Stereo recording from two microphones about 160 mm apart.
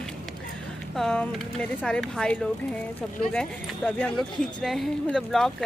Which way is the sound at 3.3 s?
5° left (ahead or behind).